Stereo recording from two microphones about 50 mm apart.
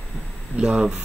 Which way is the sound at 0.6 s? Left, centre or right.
Right.